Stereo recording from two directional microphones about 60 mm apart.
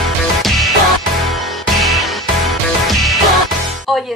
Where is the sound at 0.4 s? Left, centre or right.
Centre.